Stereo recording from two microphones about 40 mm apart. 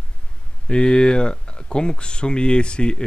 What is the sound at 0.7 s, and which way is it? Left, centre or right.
Speech, left.